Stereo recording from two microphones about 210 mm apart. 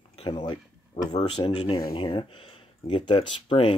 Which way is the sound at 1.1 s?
25° left (ahead or behind).